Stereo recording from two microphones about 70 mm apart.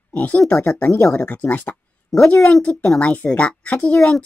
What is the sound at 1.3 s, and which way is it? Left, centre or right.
Speech, left.